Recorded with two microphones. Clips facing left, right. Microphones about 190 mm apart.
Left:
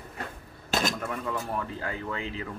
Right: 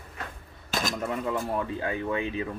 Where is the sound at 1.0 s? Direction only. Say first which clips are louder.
Right 3 dB; 20° right (ahead or behind).